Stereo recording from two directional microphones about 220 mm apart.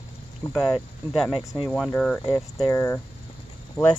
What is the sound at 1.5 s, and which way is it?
Speech, 15° left (ahead or behind).